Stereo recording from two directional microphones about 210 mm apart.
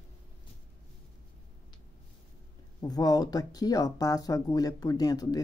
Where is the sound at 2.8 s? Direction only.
20° left (ahead or behind).